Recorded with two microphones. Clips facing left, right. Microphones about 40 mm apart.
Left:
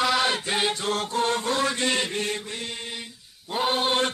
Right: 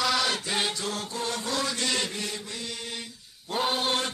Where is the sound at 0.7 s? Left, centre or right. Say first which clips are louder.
Left 7 dB; left.